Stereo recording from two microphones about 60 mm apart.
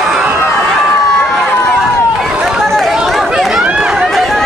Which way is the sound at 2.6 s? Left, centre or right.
Centre.